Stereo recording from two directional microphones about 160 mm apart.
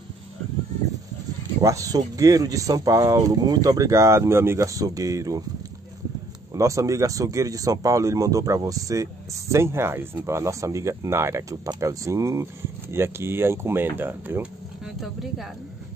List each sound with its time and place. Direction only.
1.6 s speech: 20° right (ahead or behind)
6.5 s speech: 20° right (ahead or behind); by 15.4 s centre (ahead or behind)